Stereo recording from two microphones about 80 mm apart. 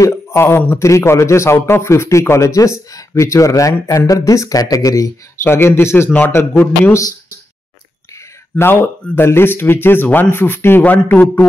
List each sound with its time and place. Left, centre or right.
0.0 s a man's voice: left
0.8 s a man's voice: left
5.4 s a man's voice: left
8.5 s a man's voice: left